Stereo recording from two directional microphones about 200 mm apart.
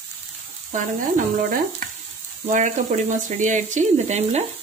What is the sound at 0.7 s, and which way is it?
Speech, 40° right (ahead or behind).